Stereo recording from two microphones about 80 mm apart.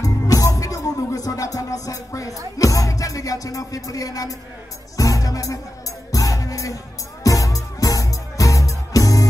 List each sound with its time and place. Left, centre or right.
0.0 s music: left